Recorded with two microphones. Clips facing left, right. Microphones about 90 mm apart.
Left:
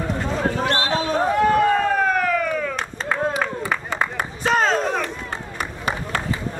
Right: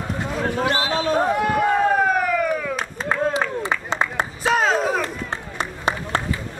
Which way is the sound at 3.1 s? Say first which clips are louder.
Right 1 dB; 20° right (ahead or behind).